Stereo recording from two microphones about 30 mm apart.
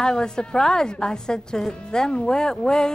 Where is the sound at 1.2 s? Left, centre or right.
Left.